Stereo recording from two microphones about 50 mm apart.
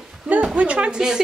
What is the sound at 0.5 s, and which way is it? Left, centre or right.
Speech, right.